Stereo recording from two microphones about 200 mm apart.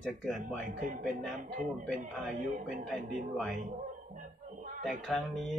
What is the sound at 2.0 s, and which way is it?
Speech, 40° right (ahead or behind).